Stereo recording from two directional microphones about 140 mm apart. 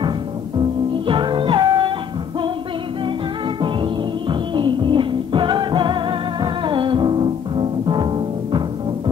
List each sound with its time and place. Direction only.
1.0 s music: 35° right (ahead or behind)
3.6 s music: 35° right (ahead or behind)